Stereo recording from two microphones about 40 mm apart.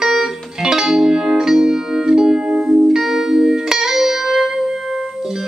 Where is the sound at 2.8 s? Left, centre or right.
Centre.